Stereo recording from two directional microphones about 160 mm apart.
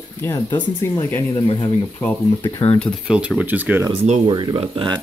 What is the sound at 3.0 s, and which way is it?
Speech, 5° right (ahead or behind).